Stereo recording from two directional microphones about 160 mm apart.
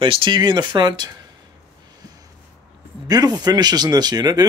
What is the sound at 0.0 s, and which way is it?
Speech, 30° right (ahead or behind).